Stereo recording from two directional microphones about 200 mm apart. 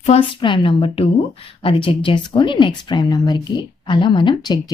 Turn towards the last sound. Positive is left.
turn(degrees=20)  # may be behind; listen again after turning